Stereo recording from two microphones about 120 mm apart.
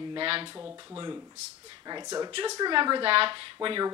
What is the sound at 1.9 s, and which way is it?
A woman's voice, 35° right (ahead or behind).